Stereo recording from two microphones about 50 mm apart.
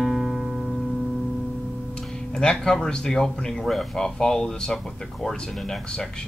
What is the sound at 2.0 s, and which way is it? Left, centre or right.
Speech, centre.